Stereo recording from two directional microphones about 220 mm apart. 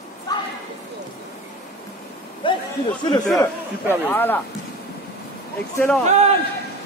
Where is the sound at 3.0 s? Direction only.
20° left (ahead or behind).